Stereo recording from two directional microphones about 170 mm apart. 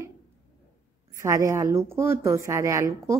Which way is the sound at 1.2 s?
20° right (ahead or behind).